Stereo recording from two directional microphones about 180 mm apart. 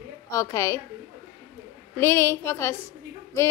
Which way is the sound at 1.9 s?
15° left (ahead or behind).